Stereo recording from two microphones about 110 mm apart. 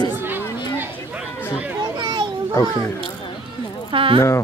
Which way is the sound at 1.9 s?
45° right (ahead or behind).